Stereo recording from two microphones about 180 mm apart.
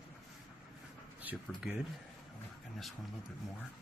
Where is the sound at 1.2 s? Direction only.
10° right (ahead or behind).